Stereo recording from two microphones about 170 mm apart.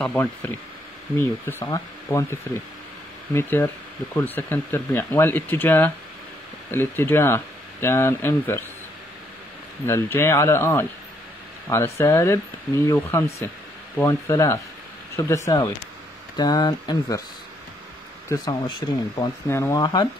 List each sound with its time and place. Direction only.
0.0 s speech: 10° left (ahead or behind)
3.3 s speech: 15° left (ahead or behind)
9.8 s speech: 15° left (ahead or behind)
18.3 s speech: 25° left (ahead or behind)
19.4 s speech: 15° left (ahead or behind)